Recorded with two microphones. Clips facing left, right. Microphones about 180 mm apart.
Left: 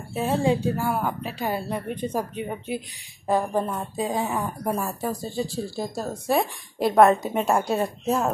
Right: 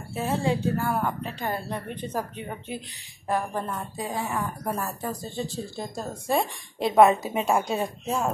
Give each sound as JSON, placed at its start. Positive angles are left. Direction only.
{"t": 0.1, "sound": "a woman's voice", "side_deg": 15}
{"t": 4.6, "sound": "a woman's voice", "side_deg": 10}